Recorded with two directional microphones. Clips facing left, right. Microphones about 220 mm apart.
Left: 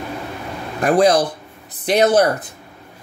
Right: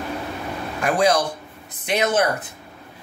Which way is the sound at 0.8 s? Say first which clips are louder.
Left 5 dB; 35° left (ahead or behind).